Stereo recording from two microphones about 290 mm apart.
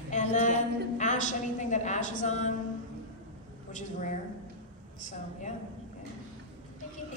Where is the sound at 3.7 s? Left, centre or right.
Left.